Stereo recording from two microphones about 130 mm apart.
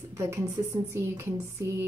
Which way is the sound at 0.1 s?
20° right (ahead or behind).